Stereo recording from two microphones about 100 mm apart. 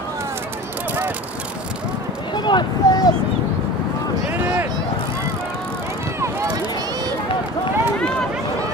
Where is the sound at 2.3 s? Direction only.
50° left (ahead or behind).